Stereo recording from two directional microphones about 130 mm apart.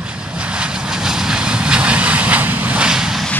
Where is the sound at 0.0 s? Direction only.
10° right (ahead or behind).